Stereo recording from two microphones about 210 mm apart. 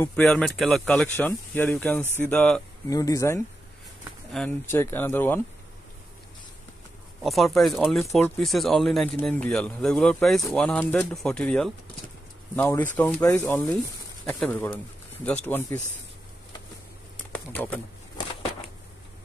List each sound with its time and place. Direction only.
0.0 s speech: 5° left (ahead or behind)
2.9 s speech: 15° left (ahead or behind)
7.2 s speech: centre (ahead or behind)
17.3 s a sound: 5° left (ahead or behind)